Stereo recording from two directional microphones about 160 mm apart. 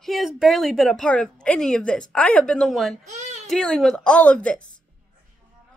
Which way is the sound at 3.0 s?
45° right (ahead or behind).